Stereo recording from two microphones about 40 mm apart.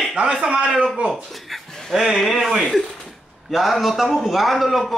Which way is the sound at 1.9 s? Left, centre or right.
Centre.